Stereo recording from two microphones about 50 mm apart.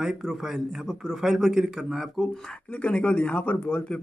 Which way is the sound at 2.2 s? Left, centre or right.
Centre.